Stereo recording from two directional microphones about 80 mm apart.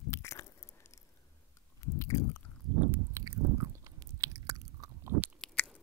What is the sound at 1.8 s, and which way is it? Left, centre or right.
Chewing, left.